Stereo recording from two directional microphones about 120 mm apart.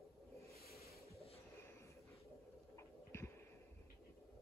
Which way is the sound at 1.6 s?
20° left (ahead or behind).